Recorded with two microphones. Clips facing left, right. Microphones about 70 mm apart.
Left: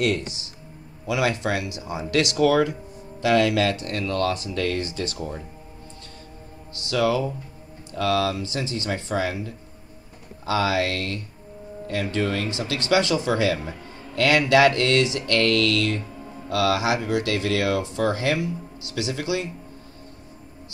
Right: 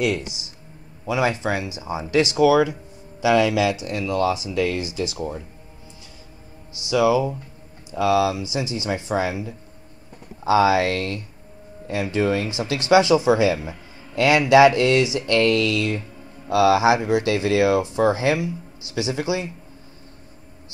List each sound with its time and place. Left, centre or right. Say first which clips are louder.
0.0 s speech: right 1 dB; centre
6.7 s speech: right 4 dB; centre
11.9 s speech: right 4 dB; centre